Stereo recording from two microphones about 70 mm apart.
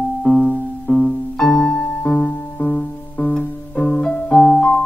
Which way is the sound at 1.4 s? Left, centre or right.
Centre.